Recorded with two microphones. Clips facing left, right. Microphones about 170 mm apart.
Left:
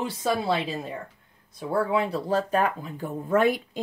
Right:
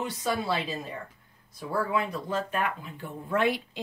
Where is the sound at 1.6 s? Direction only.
25° left (ahead or behind); by 3.8 s 45° left (ahead or behind).